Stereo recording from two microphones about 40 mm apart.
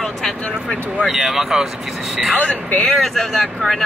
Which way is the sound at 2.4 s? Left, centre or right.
Left.